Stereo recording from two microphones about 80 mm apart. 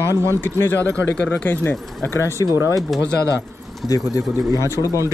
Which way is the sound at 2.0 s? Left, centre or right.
Left.